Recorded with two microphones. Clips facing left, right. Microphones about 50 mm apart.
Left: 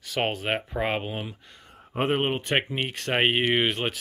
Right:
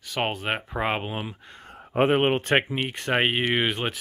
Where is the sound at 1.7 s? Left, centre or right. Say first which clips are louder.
Right 5 dB; right.